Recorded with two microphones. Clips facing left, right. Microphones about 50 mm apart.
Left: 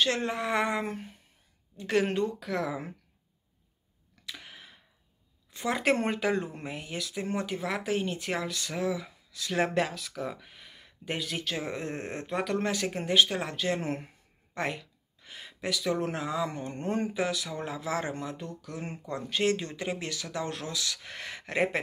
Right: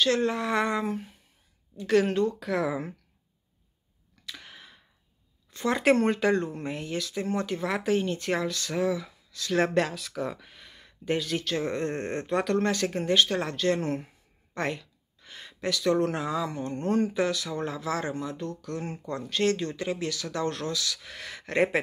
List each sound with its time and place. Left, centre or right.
0.0 s speech: left
0.8 s speech: left
1.8 s speech: left
2.4 s speech: centre
4.3 s a sound: centre
6.1 s speech: centre
7.6 s speech: centre; by 14.0 s left
14.5 s a sound: centre
15.8 s speech: centre; by 18.5 s left
18.6 s speech: centre
18.9 s speech: left
20.8 s speech: left